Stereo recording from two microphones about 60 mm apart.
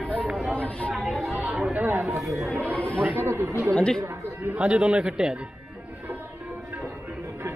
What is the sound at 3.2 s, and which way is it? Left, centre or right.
Speech, right.